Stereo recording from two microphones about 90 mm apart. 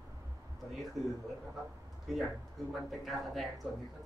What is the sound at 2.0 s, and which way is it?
A man's voice, centre (ahead or behind).